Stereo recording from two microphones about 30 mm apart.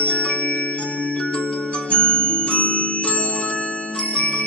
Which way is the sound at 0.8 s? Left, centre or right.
Centre.